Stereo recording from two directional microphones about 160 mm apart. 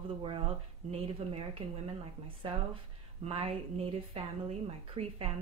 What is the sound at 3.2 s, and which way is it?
Speech, 35° right (ahead or behind).